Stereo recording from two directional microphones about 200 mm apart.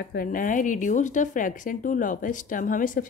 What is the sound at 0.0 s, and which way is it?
Speech, 50° left (ahead or behind).